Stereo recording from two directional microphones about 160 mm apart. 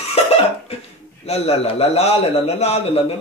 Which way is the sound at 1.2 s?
40° left (ahead or behind).